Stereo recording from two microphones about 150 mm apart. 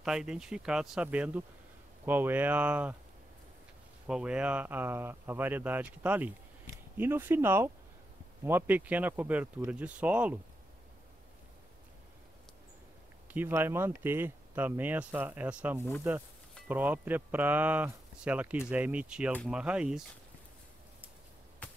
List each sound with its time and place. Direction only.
0.0 s speech: 5° right (ahead or behind)
4.1 s speech: 5° right (ahead or behind)
13.3 s speech: 15° right (ahead or behind)